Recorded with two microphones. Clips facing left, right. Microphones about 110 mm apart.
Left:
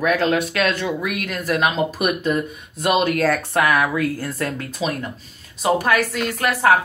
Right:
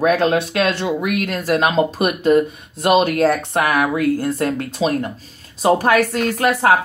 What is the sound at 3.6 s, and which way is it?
Speech, 35° right (ahead or behind).